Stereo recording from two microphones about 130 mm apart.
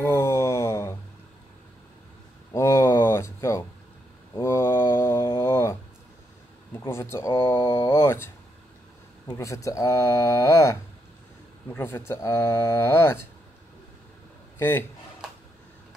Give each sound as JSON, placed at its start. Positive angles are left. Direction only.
{"t": 0.0, "sound": "a sound", "side_deg": 20}
{"t": 2.5, "sound": "a sound", "side_deg": 20}
{"t": 4.4, "sound": "mantra", "side_deg": 20}
{"t": 6.9, "sound": "speech", "side_deg": 20}
{"t": 9.4, "sound": "speech", "side_deg": 25}
{"t": 14.6, "sound": "speech", "side_deg": 20}